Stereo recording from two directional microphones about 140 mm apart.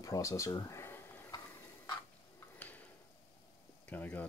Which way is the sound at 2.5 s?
10° left (ahead or behind).